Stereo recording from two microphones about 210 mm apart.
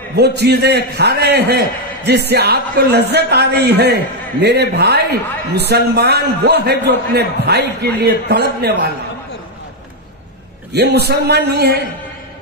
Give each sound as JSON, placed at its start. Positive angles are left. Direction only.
{"t": 0.1, "sound": "a man's voice", "side_deg": -50}
{"t": 10.7, "sound": "a man's voice", "side_deg": -50}